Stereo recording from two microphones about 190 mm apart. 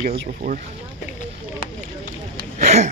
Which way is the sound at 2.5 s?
40° right (ahead or behind).